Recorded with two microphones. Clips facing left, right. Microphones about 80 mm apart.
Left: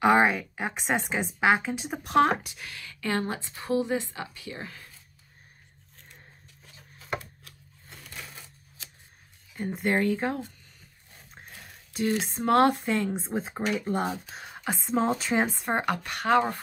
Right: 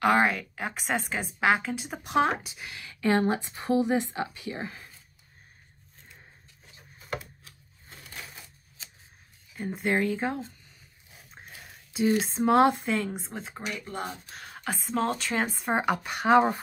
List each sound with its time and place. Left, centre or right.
0.0 s a woman's voice: centre
2.9 s speech: right
9.5 s speech: centre
11.1 s a sound: centre
13.1 s speech: left
14.4 s a sound: centre
15.0 s a woman's voice: centre
15.4 s speech: centre